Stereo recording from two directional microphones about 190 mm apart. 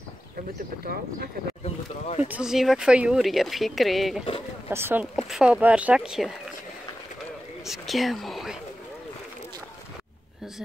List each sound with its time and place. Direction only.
1.6 s speech: 35° left (ahead or behind)
2.2 s speech: 5° right (ahead or behind)
4.6 s speech: 10° right (ahead or behind)
7.6 s speech: centre (ahead or behind)